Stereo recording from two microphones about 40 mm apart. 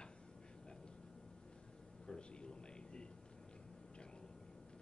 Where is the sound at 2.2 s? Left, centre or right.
Left.